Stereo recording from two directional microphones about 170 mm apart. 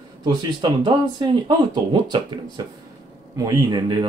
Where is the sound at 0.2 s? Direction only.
25° right (ahead or behind).